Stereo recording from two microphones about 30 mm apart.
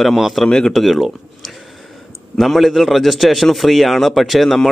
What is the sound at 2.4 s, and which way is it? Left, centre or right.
A man's voice, centre.